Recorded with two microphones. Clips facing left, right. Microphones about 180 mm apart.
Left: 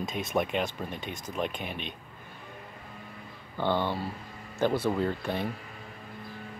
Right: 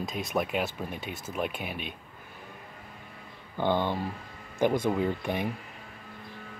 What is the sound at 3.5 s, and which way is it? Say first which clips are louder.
Speech: right 1 dB; 15° right (ahead or behind).